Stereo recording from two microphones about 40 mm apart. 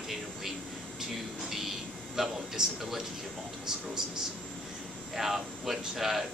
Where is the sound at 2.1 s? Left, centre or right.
Centre.